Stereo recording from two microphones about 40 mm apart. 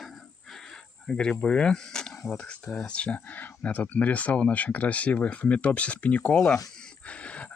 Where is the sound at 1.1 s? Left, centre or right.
Centre.